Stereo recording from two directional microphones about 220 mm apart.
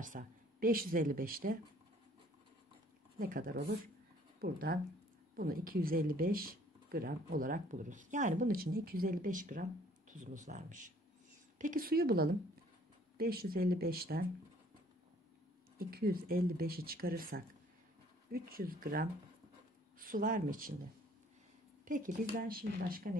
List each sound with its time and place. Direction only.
0.0 s speech: 35° right (ahead or behind)
3.2 s speech: 40° right (ahead or behind)
15.9 s speech: 45° right (ahead or behind)
21.8 s speech: 35° right (ahead or behind)